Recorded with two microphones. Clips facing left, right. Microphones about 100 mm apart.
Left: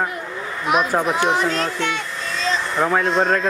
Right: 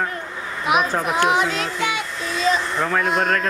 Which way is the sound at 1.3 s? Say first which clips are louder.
Left 1 dB; 5° right (ahead or behind).